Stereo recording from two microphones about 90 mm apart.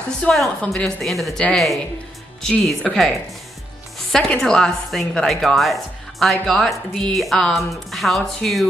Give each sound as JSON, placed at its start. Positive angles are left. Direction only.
{"t": 0.2, "sound": "a woman's voice", "side_deg": 10}
{"t": 2.4, "sound": "a woman's voice", "side_deg": 10}